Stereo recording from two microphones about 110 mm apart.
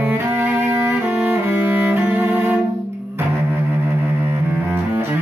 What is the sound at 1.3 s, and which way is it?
Music, 20° right (ahead or behind).